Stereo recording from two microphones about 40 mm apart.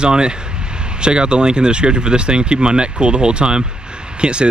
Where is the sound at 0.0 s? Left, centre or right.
Right.